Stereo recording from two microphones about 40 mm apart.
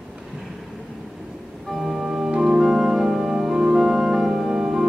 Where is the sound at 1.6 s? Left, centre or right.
Centre.